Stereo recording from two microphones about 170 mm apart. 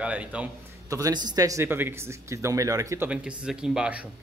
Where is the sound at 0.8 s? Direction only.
20° right (ahead or behind).